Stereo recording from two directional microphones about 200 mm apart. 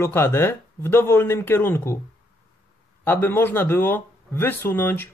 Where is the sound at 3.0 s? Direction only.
10° left (ahead or behind).